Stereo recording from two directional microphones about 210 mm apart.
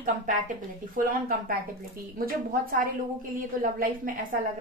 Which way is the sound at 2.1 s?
45° right (ahead or behind).